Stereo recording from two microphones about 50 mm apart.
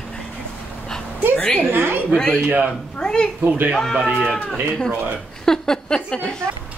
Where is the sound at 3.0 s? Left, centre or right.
Centre.